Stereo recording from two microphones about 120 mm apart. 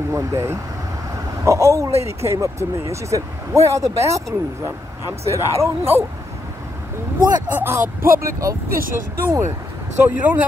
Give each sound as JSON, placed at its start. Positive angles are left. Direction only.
{"t": 0.1, "sound": "speech", "side_deg": -25}
{"t": 7.2, "sound": "speech", "side_deg": -35}
{"t": 7.4, "sound": "speech", "side_deg": -15}